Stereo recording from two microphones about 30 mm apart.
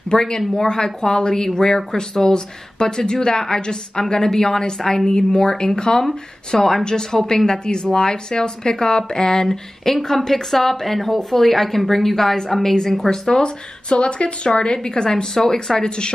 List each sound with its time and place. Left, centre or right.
0.1 s a woman's voice: left; by 12.4 s centre
13.3 s speech: left